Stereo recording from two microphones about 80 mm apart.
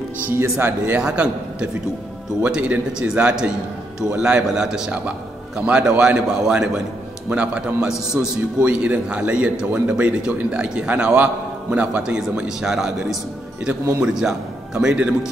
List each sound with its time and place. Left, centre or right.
0.4 s speech: right
1.0 s a man's voice: centre
8.6 s a man's voice: centre